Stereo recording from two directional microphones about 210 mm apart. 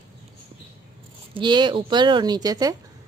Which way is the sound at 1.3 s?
20° right (ahead or behind).